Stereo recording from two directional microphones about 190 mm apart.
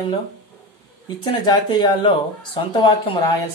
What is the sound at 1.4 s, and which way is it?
Speech, 25° left (ahead or behind).